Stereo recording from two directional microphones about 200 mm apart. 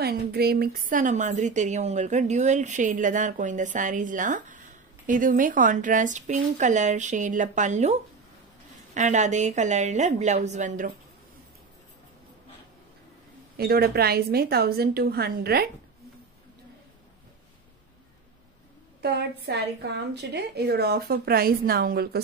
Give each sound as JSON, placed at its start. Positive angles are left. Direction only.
{"t": 0.0, "sound": "a woman's voice", "side_deg": -50}
{"t": 13.6, "sound": "a woman's voice", "side_deg": -50}
{"t": 18.9, "sound": "a woman's voice", "side_deg": -55}